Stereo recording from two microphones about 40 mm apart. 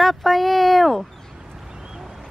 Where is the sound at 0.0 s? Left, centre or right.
Centre.